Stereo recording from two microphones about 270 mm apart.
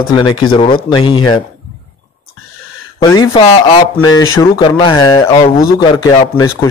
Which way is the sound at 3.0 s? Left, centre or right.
Centre.